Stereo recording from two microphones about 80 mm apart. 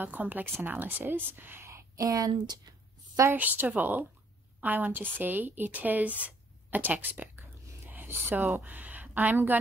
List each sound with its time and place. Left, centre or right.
0.0 s a woman's voice: right
3.3 s a woman's voice: right